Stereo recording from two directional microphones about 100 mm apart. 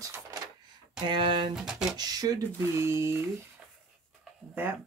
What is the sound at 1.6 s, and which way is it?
Speech, 5° right (ahead or behind).